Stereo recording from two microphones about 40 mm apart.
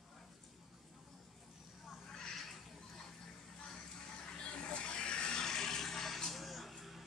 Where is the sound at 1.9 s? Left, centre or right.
Centre.